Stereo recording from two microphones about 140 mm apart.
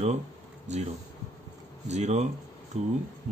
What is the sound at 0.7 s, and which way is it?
Speech, 55° right (ahead or behind).